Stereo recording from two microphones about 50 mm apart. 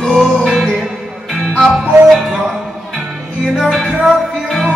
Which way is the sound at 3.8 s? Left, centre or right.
Centre.